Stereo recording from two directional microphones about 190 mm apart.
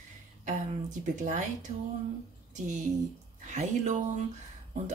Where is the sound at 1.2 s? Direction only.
40° right (ahead or behind).